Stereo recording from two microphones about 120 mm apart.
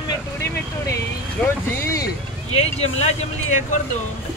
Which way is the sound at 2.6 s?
60° left (ahead or behind).